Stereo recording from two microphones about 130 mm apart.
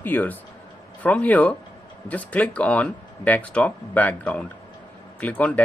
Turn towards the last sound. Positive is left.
turn(degrees=10)  # may be behind; listen again after turning